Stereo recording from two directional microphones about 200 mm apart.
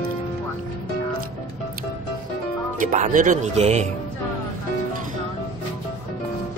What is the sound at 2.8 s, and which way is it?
Speech, 40° right (ahead or behind).